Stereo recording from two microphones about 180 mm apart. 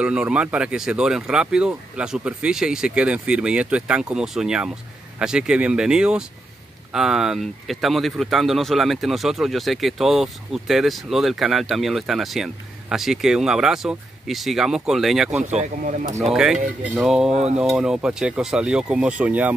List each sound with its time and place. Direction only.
0.0 s speech: 5° right (ahead or behind)
15.4 s speech: 40° right (ahead or behind)
16.3 s speech: 5° right (ahead or behind)
17.3 s speech: 40° right (ahead or behind)
17.6 s speech: 5° right (ahead or behind)